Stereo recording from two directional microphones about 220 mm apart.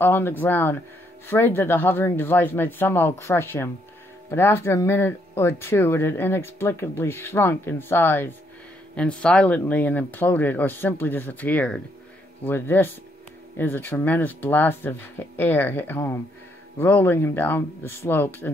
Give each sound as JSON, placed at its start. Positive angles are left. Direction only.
{"t": 0.0, "sound": "speech", "side_deg": 10}